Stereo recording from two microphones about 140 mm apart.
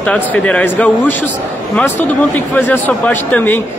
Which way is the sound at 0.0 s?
10° left (ahead or behind).